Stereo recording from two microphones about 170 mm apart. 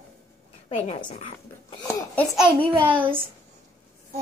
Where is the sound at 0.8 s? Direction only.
40° left (ahead or behind).